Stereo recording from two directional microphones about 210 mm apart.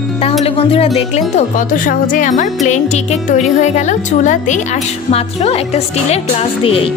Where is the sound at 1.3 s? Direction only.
40° left (ahead or behind).